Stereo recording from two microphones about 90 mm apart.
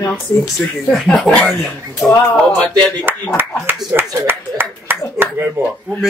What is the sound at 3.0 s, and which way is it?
Speech, 25° right (ahead or behind).